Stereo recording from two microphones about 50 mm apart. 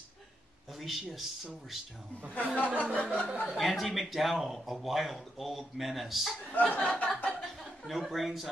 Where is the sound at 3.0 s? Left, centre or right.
Left.